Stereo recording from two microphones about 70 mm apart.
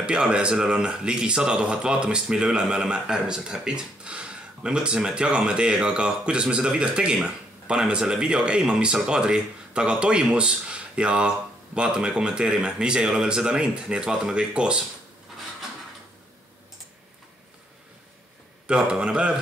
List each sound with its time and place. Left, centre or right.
0.0 s speech: centre
18.7 s speech: centre